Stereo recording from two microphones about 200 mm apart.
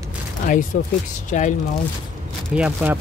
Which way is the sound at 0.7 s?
45° left (ahead or behind).